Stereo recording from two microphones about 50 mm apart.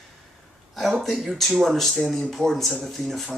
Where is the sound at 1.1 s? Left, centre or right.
Centre.